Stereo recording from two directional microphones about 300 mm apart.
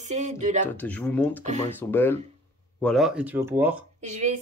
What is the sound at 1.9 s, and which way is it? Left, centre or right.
Speech, centre.